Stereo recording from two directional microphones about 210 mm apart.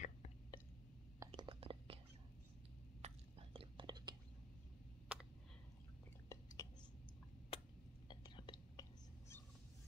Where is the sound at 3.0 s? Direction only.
25° right (ahead or behind).